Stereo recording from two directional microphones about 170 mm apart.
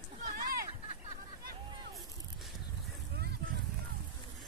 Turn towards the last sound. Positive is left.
turn(degrees=-85)